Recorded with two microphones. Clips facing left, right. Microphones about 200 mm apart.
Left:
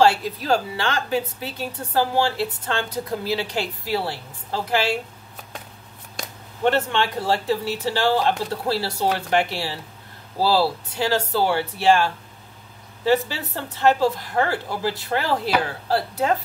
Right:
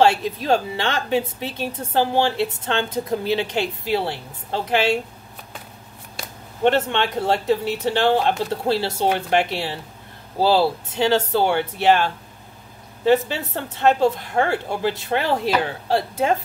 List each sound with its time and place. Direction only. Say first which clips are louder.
0.0 s speech: right 1 dB; 20° right (ahead or behind)
6.6 s speech: right 2 dB; 20° right (ahead or behind)